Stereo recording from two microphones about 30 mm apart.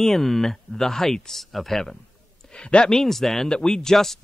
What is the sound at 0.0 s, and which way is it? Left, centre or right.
Speech, centre.